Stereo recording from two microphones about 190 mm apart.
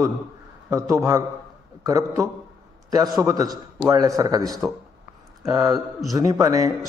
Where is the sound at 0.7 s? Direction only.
15° right (ahead or behind).